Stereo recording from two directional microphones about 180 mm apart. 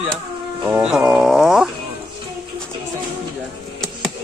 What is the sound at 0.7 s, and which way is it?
Music, 5° right (ahead or behind).